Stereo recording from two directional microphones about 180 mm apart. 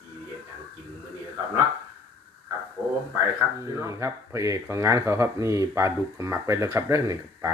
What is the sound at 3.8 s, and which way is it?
Speech, 15° right (ahead or behind).